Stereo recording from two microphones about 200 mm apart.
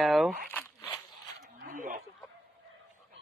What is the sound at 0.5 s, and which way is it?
Speech, 10° left (ahead or behind).